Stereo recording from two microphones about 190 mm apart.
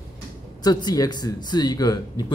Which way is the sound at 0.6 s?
20° left (ahead or behind).